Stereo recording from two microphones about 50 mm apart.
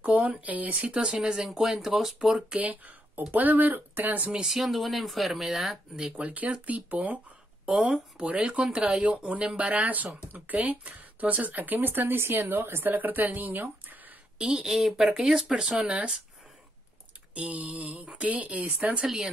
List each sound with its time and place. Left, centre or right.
0.0 s a sound: right
0.4 s speech: right
0.8 s speech: centre
2.6 s speech: right
4.5 s speech: centre
6.2 s speech: right
7.6 s speech: centre; by 14.1 s right
14.4 s speech: centre
17.3 s speech: right